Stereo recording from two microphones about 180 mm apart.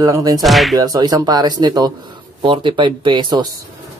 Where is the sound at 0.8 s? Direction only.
20° right (ahead or behind).